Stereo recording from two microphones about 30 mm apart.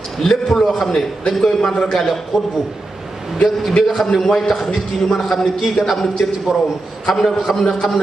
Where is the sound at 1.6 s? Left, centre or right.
Left.